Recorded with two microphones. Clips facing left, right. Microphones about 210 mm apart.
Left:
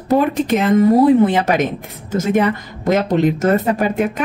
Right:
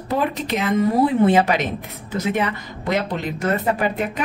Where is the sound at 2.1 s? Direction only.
45° left (ahead or behind).